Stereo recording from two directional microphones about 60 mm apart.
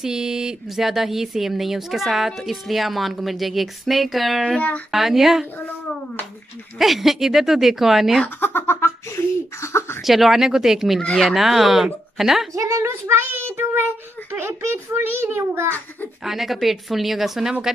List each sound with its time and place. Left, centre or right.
0.0 s speech: centre
4.6 s speech: left
4.9 s speech: centre
6.8 s speech: centre
8.4 s a sound: left
10.0 s speech: centre
12.5 s child singing: right
14.7 s a child's voice: right
16.3 s speech: centre